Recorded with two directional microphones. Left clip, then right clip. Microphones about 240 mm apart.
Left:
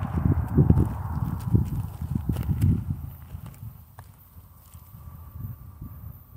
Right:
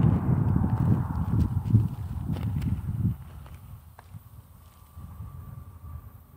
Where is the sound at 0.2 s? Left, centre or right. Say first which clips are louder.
Left 3 dB; left.